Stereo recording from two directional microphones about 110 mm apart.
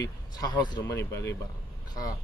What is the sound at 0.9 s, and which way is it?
Speech, 25° left (ahead or behind).